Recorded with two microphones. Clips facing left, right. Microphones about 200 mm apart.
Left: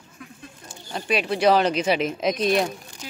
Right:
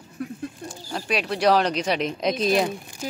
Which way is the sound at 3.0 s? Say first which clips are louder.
Right 9 dB; 40° right (ahead or behind).